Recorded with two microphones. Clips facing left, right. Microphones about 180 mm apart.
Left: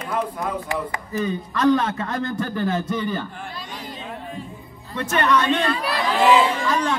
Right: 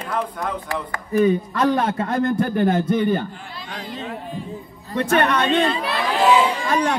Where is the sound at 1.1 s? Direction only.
55° right (ahead or behind).